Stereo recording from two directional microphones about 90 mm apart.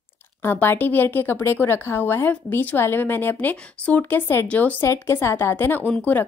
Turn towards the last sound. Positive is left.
turn(degrees=20)  # may be behind; listen again after turning